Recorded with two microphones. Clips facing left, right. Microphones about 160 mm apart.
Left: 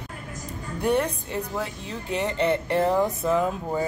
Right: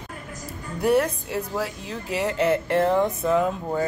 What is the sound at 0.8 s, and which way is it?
Speech, 5° right (ahead or behind).